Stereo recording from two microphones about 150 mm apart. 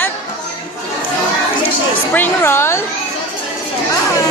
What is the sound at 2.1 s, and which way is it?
Speech, 15° left (ahead or behind).